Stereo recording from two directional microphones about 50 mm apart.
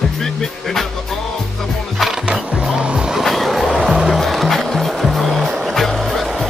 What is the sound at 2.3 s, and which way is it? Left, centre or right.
Music, centre.